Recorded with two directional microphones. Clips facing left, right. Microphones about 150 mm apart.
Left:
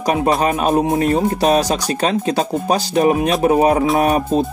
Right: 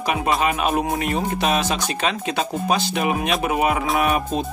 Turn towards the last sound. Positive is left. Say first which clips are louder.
# left 5 dB
turn(degrees=40)  # may be behind; listen again after turning